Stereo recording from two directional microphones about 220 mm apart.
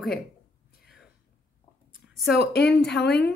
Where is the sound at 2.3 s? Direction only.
45° left (ahead or behind).